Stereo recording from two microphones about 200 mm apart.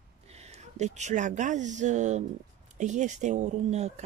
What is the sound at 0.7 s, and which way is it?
Speech, 35° right (ahead or behind).